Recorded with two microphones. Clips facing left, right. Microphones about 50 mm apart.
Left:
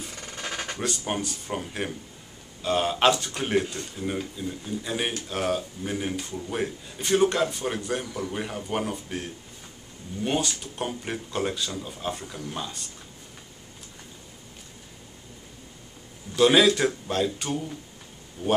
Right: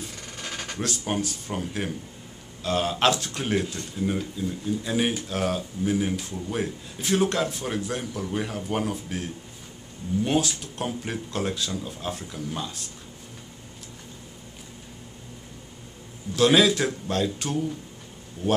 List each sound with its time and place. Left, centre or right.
0.4 s a sound: left
0.7 s a man's voice: centre
10.2 s a man's voice: centre
16.3 s a man's voice: centre